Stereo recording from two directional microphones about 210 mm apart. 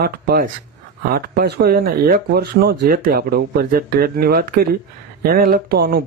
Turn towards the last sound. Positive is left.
turn(degrees=-45)  # may be behind; listen again after turning